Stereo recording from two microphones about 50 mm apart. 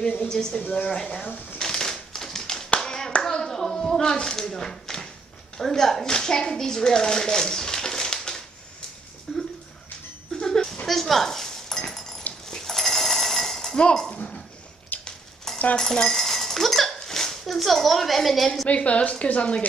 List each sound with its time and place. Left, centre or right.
0.2 s speech: centre
0.6 s a woman's voice: left
1.6 s crushing: centre
2.8 s hands: centre
3.2 s clapping: centre
5.6 s a child's voice: centre
10.3 s a sound: centre
10.9 s dog: centre
12.4 s a sound: centre
15.0 s a sound: centre
15.8 s speech: centre
18.7 s a woman's voice: left